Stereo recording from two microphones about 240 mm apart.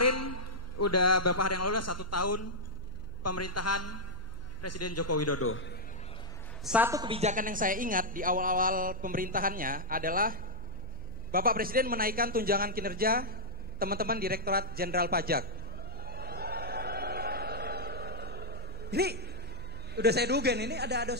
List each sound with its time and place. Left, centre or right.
0.0 s a man's voice: left
6.6 s a woman's voice: centre; by 15.4 s right
16.0 s a sound: right
20.0 s a man's voice: right